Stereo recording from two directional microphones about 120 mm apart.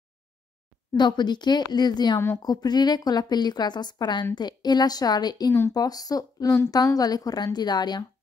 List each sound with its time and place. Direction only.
0.9 s a woman's voice: 40° left (ahead or behind)
2.1 s a woman's voice: 25° left (ahead or behind)
5.5 s speech: 20° left (ahead or behind)
5.8 s a woman's voice: 30° left (ahead or behind)